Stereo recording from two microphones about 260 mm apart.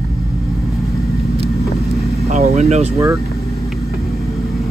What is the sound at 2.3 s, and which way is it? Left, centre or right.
Speech, right.